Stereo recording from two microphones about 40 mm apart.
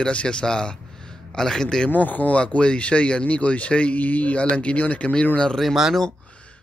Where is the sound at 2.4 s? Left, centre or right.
Left.